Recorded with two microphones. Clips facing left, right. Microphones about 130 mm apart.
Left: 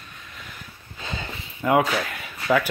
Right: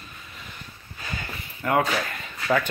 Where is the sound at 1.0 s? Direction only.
25° left (ahead or behind).